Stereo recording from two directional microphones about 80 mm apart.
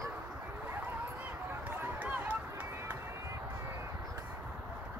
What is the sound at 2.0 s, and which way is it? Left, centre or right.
Run, centre.